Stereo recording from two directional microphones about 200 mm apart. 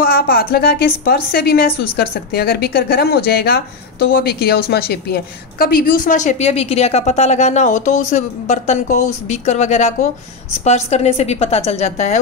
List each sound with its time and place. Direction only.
0.0 s a woman's voice: 50° left (ahead or behind)